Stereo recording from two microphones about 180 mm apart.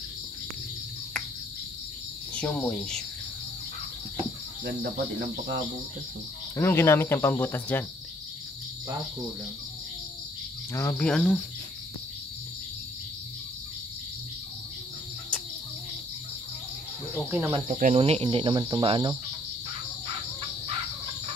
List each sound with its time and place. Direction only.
2.3 s speech: 5° left (ahead or behind)
4.6 s cricket: 65° right (ahead or behind)
6.5 s speech: 15° left (ahead or behind)
10.7 s speech: 15° left (ahead or behind)
17.3 s speech: 10° right (ahead or behind)
17.6 s speech: 45° right (ahead or behind)
18.0 s speech: 30° right (ahead or behind)